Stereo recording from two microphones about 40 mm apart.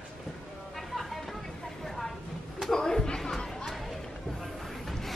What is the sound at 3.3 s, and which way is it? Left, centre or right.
Chatter, centre.